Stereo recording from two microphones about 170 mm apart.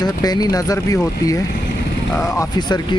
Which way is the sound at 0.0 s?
20° left (ahead or behind).